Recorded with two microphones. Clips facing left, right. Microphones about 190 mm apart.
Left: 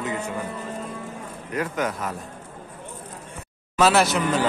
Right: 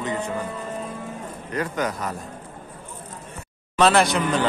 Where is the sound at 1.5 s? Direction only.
5° left (ahead or behind).